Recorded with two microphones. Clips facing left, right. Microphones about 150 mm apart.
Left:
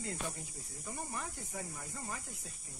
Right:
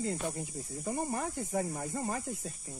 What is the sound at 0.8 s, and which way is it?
Speech, 55° right (ahead or behind).